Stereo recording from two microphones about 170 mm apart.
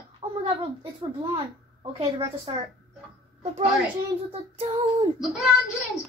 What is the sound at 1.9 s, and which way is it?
Speech, 30° right (ahead or behind).